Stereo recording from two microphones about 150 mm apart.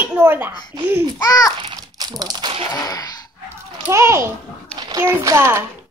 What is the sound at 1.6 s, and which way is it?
Crumpling, 30° right (ahead or behind).